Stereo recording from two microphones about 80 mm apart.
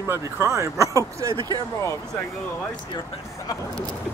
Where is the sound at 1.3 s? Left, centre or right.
Right.